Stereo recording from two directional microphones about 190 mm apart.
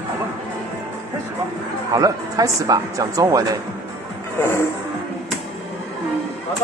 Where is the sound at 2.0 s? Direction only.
20° right (ahead or behind).